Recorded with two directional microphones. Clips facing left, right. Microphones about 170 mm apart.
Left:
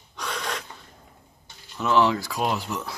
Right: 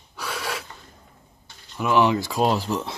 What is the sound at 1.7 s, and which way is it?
Speech, 15° right (ahead or behind).